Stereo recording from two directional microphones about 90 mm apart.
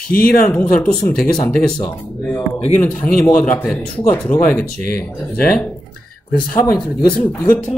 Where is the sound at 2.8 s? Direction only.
15° left (ahead or behind).